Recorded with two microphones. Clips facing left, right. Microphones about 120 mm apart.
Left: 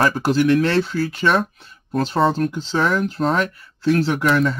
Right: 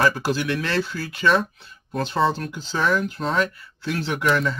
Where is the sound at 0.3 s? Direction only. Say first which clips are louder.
Left 8 dB; 40° left (ahead or behind).